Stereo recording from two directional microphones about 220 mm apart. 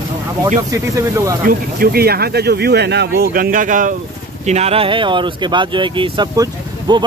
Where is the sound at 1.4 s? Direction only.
40° right (ahead or behind).